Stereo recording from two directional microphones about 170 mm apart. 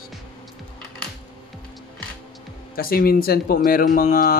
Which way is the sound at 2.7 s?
60° left (ahead or behind).